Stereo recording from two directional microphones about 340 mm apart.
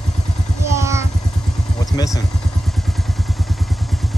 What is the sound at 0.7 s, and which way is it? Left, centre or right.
Vehicle, centre.